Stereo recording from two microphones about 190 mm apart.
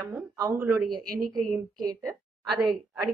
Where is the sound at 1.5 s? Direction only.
15° right (ahead or behind).